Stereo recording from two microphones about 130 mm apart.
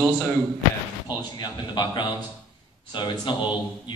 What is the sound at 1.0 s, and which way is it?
A man's voice, 35° left (ahead or behind).